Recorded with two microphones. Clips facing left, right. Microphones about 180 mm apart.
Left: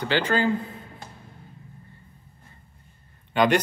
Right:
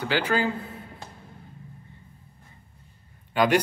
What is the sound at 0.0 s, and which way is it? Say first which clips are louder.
Speech: left 1 dB; 5° right (ahead or behind).